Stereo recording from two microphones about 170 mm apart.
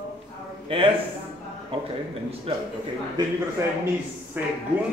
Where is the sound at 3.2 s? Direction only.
25° right (ahead or behind).